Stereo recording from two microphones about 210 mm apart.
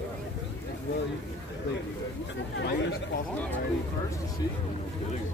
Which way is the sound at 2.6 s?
55° left (ahead or behind).